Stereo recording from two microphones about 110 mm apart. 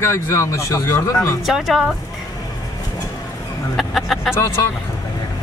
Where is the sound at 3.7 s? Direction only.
Centre (ahead or behind).